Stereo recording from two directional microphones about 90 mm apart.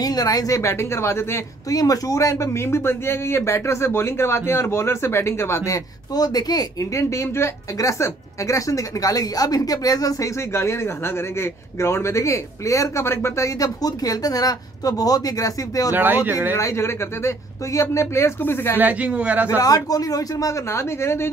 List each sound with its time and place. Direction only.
0.0 s speech: 45° left (ahead or behind); by 1.8 s 30° left (ahead or behind)
1.8 s speech: 40° left (ahead or behind)
6.1 s speech: 45° left (ahead or behind)
15.9 s speech: 20° right (ahead or behind)
16.5 s speech: 35° left (ahead or behind)
18.8 s speech: 15° right (ahead or behind)
19.4 s speech: 40° left (ahead or behind)